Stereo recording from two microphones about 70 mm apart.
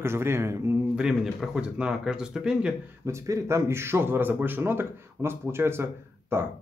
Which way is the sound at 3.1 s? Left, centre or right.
Right.